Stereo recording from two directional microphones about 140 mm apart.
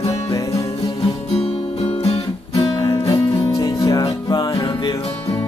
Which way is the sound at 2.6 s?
25° left (ahead or behind).